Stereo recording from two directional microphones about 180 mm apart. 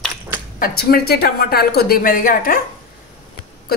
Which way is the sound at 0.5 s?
55° left (ahead or behind).